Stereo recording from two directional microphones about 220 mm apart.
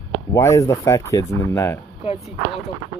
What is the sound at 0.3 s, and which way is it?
Speech, 15° left (ahead or behind).